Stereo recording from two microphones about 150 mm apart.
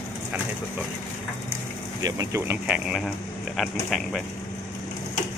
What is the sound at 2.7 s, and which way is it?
Speech, 5° right (ahead or behind).